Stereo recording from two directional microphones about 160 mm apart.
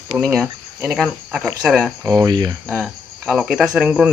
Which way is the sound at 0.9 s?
Centre (ahead or behind).